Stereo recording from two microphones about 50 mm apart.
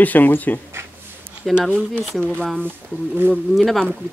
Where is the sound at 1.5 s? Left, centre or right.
Centre.